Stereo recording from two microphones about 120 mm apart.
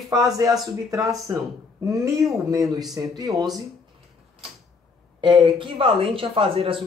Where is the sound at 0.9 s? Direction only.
30° right (ahead or behind).